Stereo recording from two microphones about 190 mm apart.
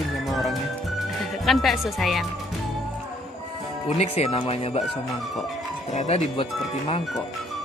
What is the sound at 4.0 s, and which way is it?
Speech, 35° left (ahead or behind).